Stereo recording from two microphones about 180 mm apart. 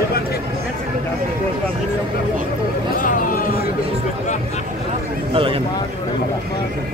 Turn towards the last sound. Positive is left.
turn(degrees=-30)  # may be behind; listen again after turning